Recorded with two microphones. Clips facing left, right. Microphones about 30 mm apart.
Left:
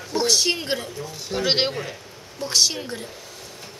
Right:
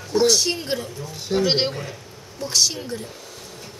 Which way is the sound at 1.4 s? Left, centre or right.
Centre.